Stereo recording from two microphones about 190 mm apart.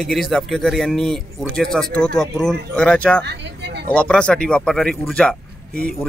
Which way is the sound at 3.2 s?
65° right (ahead or behind).